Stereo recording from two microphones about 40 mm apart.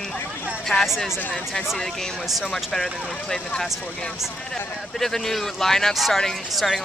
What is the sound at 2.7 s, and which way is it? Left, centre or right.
Speech, centre.